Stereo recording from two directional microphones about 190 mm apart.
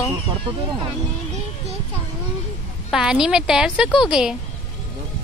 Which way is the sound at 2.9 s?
5° right (ahead or behind).